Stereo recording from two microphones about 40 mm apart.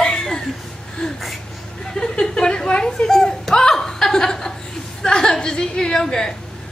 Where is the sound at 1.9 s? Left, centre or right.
Centre.